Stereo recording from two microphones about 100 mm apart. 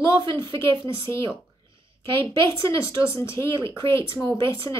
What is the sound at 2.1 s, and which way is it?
A woman's voice, 30° left (ahead or behind).